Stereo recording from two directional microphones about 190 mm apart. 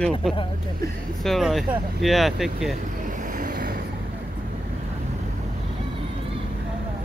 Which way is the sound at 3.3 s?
45° right (ahead or behind).